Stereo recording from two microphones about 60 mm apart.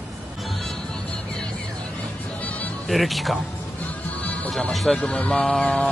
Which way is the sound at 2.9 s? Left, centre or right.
Centre.